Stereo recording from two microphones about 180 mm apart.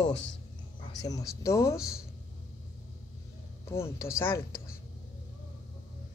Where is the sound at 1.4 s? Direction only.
15° left (ahead or behind).